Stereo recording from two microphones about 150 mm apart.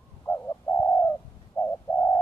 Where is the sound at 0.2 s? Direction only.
15° left (ahead or behind).